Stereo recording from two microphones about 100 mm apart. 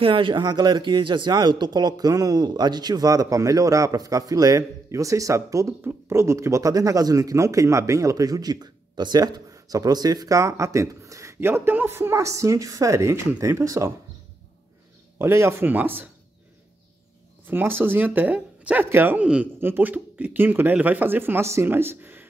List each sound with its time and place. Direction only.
0.0 s speech: 55° right (ahead or behind); by 13.9 s 30° right (ahead or behind)
15.1 s speech: 25° right (ahead or behind)
17.5 s speech: 20° right (ahead or behind)